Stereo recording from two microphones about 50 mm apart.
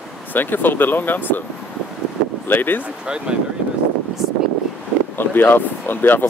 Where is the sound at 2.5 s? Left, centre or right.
Left.